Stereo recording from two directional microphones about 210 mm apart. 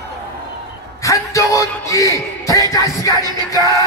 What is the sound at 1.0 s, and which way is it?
A man's voice, 15° left (ahead or behind).